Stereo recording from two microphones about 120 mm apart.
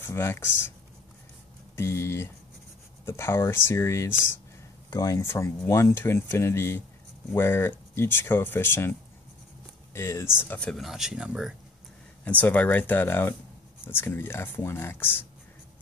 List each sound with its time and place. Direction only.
0.0 s speech: 20° left (ahead or behind)
1.8 s speech: 20° left (ahead or behind)
9.9 s speech: 20° left (ahead or behind)
10.6 s speech: 5° left (ahead or behind)
12.3 s speech: 15° left (ahead or behind)